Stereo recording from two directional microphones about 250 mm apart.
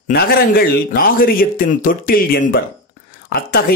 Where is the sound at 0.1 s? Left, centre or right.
Left.